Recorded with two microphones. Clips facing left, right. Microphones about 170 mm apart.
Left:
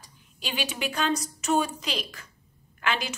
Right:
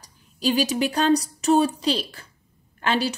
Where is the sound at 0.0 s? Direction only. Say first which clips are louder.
Right 14 dB; 40° right (ahead or behind).